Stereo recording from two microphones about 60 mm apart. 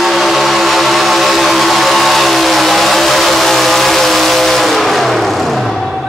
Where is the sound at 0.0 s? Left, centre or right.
Centre.